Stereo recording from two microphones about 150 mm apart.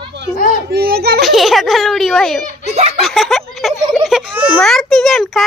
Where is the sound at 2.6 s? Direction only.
45° right (ahead or behind).